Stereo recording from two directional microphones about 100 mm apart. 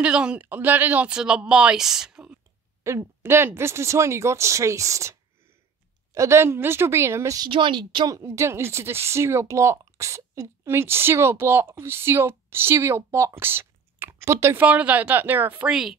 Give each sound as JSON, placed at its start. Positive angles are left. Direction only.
{"t": 0.0, "sound": "speech", "side_deg": -10}
{"t": 2.8, "sound": "speech", "side_deg": -30}
{"t": 6.1, "sound": "speech", "side_deg": -30}
{"t": 7.3, "sound": "speech", "side_deg": -55}
{"t": 8.1, "sound": "speech", "side_deg": -30}
{"t": 14.6, "sound": "speech", "side_deg": -15}
{"t": 15.7, "sound": "speech", "side_deg": -5}